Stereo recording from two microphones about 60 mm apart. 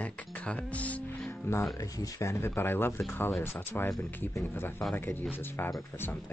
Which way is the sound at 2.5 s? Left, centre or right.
Left.